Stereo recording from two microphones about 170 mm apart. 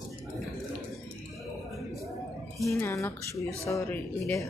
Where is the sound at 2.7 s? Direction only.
15° left (ahead or behind).